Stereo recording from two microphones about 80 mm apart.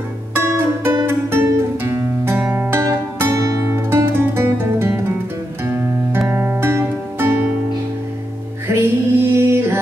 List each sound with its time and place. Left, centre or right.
0.3 s music: right
8.6 s music: right